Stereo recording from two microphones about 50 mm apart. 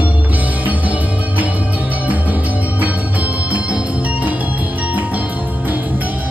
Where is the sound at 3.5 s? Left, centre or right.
Right.